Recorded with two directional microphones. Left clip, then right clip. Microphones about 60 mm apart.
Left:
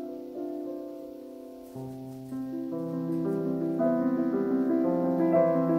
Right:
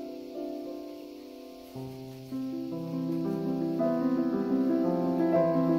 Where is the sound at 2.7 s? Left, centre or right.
Centre.